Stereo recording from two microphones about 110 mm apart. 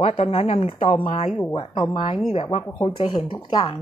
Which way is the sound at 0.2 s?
70° left (ahead or behind).